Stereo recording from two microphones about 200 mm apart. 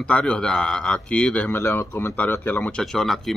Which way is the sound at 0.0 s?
5° left (ahead or behind).